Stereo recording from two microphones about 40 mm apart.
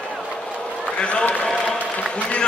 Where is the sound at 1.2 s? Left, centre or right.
Left.